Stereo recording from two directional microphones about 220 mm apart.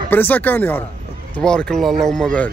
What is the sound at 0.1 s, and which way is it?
Speech, 10° left (ahead or behind).